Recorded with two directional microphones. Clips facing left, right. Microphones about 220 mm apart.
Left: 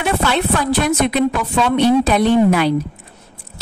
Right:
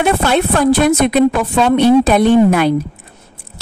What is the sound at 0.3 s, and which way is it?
A woman's voice, 50° right (ahead or behind).